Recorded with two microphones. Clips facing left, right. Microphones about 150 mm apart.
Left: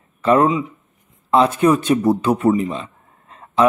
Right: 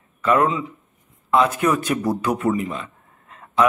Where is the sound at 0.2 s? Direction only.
30° left (ahead or behind).